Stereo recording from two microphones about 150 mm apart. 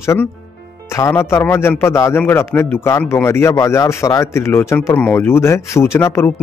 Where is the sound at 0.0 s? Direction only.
20° left (ahead or behind).